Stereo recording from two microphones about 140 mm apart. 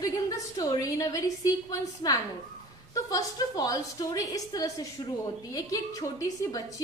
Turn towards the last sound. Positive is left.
turn(degrees=25)  # may be behind; listen again after turning